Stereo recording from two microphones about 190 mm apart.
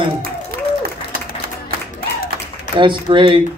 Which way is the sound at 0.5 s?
55° right (ahead or behind).